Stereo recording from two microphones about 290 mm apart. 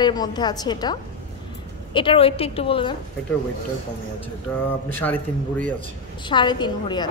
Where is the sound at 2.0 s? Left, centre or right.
Centre.